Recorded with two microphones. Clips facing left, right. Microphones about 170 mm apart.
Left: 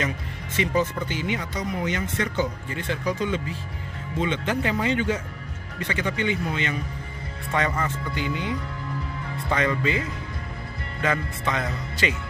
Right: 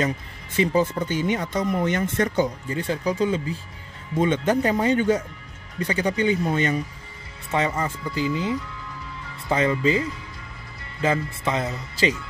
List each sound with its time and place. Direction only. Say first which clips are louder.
0.6 s speech: right 3 dB; 35° right (ahead or behind)
7.5 s speech: right 2 dB; 25° right (ahead or behind)